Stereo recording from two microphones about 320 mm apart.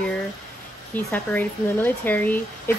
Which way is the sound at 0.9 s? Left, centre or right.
Centre.